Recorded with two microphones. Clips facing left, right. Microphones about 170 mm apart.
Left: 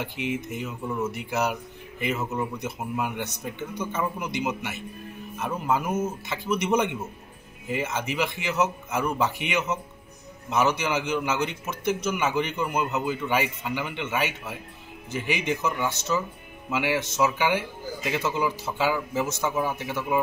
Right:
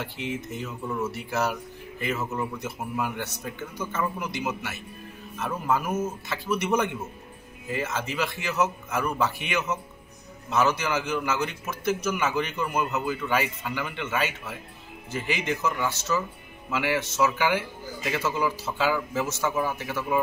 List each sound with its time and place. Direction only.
0.0 s a man's voice: 15° left (ahead or behind)